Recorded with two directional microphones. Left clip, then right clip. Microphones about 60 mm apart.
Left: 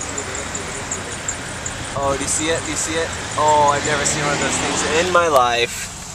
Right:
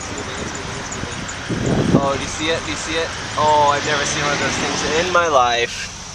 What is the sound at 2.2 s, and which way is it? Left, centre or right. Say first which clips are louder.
Speech: even; centre.